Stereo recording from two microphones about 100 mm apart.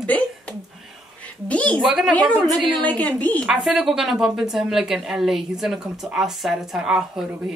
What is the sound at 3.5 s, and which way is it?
A woman's voice, centre (ahead or behind).